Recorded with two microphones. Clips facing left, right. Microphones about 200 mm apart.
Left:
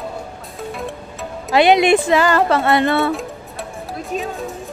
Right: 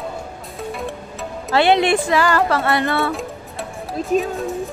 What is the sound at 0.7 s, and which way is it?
Music, centre (ahead or behind).